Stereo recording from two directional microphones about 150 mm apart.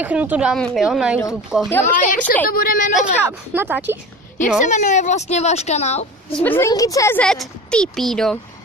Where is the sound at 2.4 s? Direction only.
75° left (ahead or behind).